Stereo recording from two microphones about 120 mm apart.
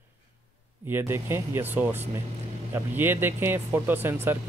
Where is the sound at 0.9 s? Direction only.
20° right (ahead or behind).